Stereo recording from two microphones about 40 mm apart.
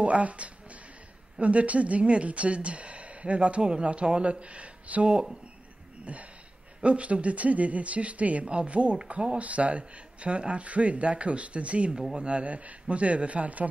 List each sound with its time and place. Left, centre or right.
0.0 s a woman's voice: right
6.1 s a woman's voice: right
9.4 s a woman's voice: right